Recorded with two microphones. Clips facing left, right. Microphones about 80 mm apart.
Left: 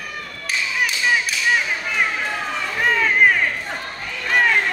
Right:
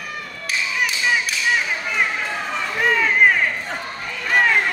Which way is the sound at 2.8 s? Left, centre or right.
Centre.